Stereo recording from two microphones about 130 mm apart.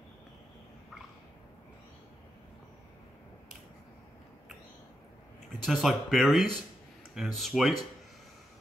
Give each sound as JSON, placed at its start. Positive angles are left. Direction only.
{"t": 5.6, "sound": "speech", "side_deg": 0}